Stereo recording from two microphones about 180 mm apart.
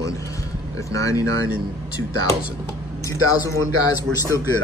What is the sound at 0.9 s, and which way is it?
Speech, 15° left (ahead or behind).